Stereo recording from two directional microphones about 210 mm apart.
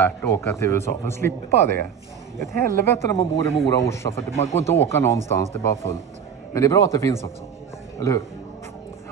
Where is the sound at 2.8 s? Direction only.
10° left (ahead or behind).